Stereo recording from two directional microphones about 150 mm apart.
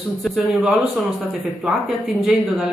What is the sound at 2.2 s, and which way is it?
Speech, 5° right (ahead or behind).